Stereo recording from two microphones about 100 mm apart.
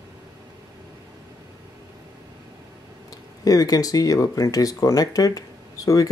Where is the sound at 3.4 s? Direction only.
40° left (ahead or behind).